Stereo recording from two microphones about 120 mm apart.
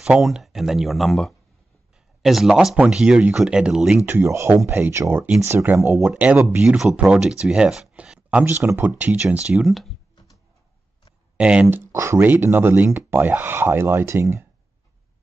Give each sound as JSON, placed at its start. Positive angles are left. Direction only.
{"t": 0.0, "sound": "speech", "side_deg": -5}
{"t": 4.0, "sound": "speech", "side_deg": -20}
{"t": 11.3, "sound": "speech", "side_deg": -10}
{"t": 11.9, "sound": "speech", "side_deg": -25}